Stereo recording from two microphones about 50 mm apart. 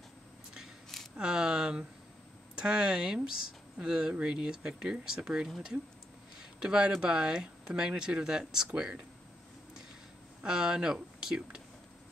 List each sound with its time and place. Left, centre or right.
1.1 s speech: centre
6.6 s speech: centre
10.4 s speech: centre